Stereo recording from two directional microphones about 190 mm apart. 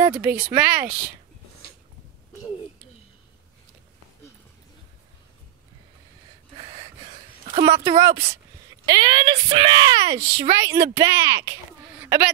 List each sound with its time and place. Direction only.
0.1 s speech: 10° right (ahead or behind)
6.5 s a sound: 35° right (ahead or behind)
7.7 s speech: 30° right (ahead or behind)
8.0 s speech: 15° right (ahead or behind)